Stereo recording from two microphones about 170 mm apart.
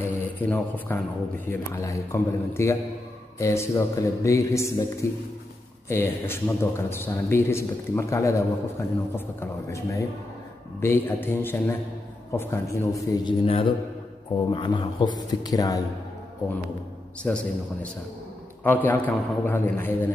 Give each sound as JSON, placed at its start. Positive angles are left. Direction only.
{"t": 0.0, "sound": "a sound", "side_deg": 15}
{"t": 1.5, "sound": "a man's voice", "side_deg": 15}
{"t": 5.9, "sound": "a man's voice", "side_deg": 15}
{"t": 13.5, "sound": "a man's voice", "side_deg": 30}
{"t": 17.2, "sound": "a man's voice", "side_deg": 5}